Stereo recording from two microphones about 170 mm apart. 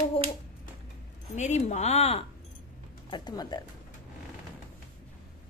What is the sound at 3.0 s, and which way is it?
Speech, 25° left (ahead or behind).